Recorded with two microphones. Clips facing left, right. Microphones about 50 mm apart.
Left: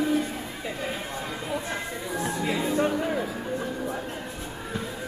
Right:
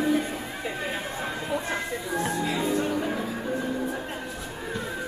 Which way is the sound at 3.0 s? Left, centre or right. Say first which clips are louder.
Even; centre.